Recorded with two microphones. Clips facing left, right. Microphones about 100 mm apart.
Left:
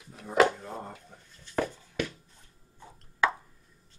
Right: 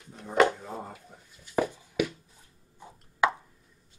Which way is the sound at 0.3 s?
Centre (ahead or behind).